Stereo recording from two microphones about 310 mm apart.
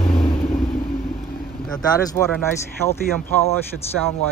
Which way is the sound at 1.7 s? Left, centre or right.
Centre.